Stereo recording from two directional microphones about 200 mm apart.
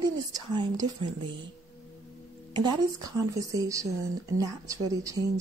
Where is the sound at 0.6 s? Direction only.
25° right (ahead or behind).